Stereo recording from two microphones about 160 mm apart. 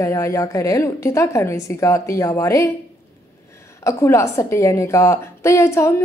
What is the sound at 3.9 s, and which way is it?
A woman's voice, 15° left (ahead or behind).